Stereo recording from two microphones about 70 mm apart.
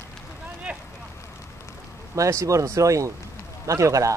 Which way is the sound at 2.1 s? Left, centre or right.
Right.